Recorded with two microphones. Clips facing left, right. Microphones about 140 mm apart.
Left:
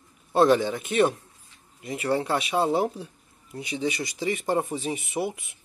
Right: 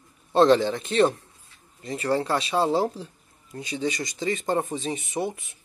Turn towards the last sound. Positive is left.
turn(degrees=10)  # may be behind; listen again after turning